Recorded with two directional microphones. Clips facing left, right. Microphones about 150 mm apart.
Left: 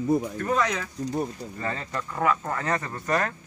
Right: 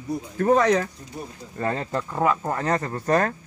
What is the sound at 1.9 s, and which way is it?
Speech, 25° right (ahead or behind).